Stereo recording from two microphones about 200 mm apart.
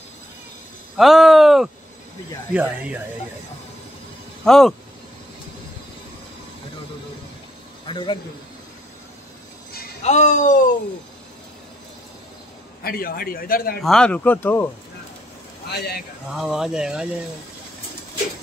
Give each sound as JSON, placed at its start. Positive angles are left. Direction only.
{"t": 0.9, "sound": "speech", "side_deg": 0}
{"t": 4.5, "sound": "speech", "side_deg": 0}
{"t": 7.8, "sound": "speech", "side_deg": 25}
{"t": 10.0, "sound": "speech", "side_deg": 35}
{"t": 12.8, "sound": "a man's voice", "side_deg": 50}
{"t": 13.8, "sound": "speech", "side_deg": 5}
{"t": 15.7, "sound": "a man's voice", "side_deg": 55}
{"t": 16.3, "sound": "speech", "side_deg": -5}